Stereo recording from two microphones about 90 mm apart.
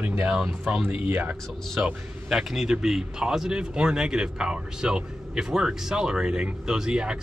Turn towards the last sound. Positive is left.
turn(degrees=-10)  # may be behind; listen again after turning